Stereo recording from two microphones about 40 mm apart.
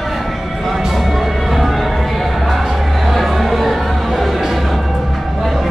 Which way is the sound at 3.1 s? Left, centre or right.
Centre.